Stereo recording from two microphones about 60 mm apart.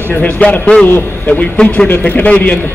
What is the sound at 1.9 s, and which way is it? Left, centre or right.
Speech, left.